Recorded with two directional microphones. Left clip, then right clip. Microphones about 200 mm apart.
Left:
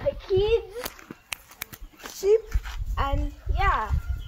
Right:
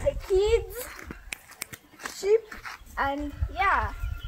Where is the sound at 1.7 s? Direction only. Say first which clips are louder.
Right 3 dB; 30° left (ahead or behind).